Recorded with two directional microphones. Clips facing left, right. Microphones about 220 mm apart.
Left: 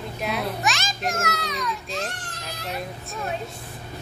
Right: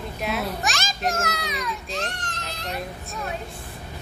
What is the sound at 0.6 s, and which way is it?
Speech, 45° right (ahead or behind).